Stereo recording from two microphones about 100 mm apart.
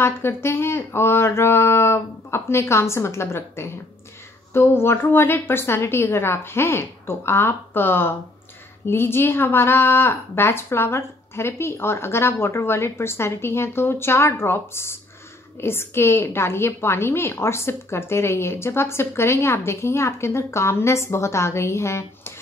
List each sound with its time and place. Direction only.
0.0 s a woman's voice: 25° left (ahead or behind)